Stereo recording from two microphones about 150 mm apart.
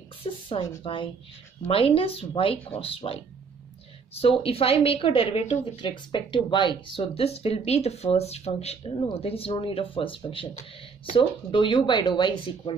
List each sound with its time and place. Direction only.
0.2 s a woman's voice: 35° left (ahead or behind)